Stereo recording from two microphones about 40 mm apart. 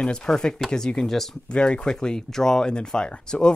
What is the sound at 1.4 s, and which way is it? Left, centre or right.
Speech, left.